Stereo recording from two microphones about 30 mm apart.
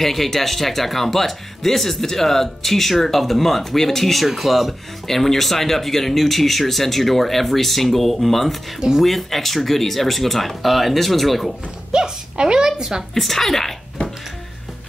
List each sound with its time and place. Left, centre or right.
0.0 s speech: centre
5.0 s speech: centre
8.7 s speech: right
9.0 s speech: centre
11.9 s a woman's voice: right
13.2 s speech: centre